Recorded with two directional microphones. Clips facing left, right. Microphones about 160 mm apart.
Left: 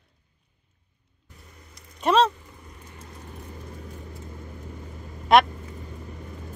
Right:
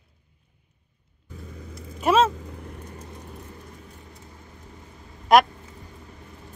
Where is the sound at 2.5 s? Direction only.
60° right (ahead or behind).